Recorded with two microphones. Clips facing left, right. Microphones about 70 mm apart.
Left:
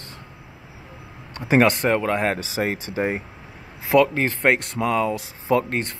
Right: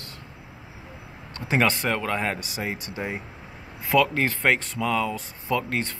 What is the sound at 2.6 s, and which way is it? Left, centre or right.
Speech, left.